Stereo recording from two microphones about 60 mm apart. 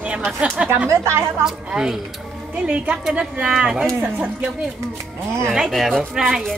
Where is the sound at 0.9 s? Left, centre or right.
Right.